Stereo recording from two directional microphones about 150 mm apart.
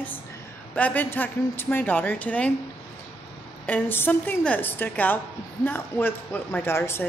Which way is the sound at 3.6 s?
10° left (ahead or behind).